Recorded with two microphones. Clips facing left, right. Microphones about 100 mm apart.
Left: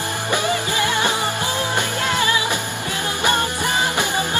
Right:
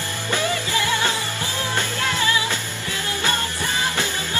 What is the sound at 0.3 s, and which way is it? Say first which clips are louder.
Music: left 1 dB; 15° left (ahead or behind).